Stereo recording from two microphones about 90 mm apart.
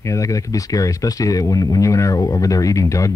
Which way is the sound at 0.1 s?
35° left (ahead or behind).